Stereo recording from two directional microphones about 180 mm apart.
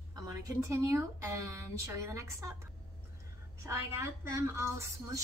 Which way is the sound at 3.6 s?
15° right (ahead or behind).